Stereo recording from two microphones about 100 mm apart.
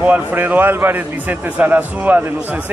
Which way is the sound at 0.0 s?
15° right (ahead or behind).